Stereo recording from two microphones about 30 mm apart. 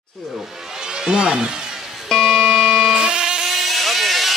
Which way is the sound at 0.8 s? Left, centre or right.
Right.